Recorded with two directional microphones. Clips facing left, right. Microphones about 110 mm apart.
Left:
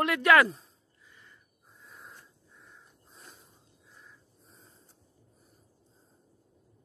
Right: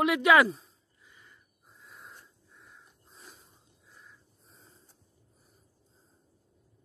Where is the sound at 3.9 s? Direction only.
Centre (ahead or behind).